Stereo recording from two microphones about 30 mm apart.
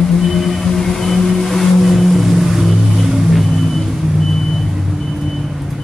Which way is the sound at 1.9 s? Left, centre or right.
Centre.